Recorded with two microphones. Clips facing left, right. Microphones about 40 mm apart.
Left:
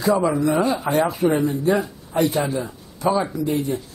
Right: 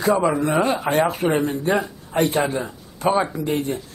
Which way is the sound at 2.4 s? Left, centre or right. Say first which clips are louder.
Right 1 dB; right.